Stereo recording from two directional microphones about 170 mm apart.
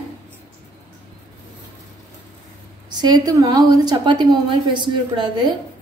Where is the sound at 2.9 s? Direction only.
25° right (ahead or behind).